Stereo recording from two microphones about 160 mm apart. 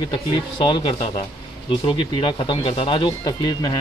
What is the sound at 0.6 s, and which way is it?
A man's voice, 30° left (ahead or behind).